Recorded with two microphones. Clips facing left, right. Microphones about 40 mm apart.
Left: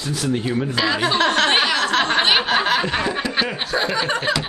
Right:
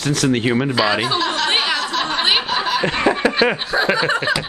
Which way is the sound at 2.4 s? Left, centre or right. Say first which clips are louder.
Left 2 dB; left.